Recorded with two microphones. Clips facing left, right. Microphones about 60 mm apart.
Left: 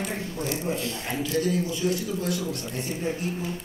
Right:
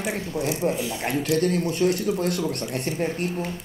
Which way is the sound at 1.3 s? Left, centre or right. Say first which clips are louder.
Right 3 dB; right.